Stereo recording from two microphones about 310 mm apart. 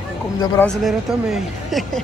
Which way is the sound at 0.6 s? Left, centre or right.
Centre.